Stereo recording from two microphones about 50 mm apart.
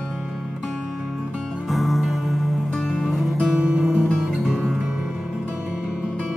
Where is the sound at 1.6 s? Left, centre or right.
Centre.